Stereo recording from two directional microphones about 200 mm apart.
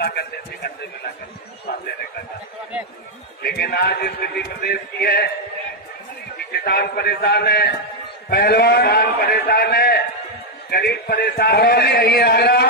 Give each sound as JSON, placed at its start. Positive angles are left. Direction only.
{"t": 0.0, "sound": "a man's voice", "side_deg": 55}
{"t": 1.7, "sound": "speech", "side_deg": 50}
{"t": 3.4, "sound": "a man's voice", "side_deg": 50}
{"t": 6.3, "sound": "a man's voice", "side_deg": 50}